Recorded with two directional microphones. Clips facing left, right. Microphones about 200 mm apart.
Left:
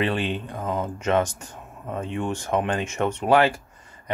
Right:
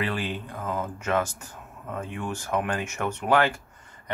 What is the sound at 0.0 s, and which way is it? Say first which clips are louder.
Speech: left 5 dB; 25° left (ahead or behind).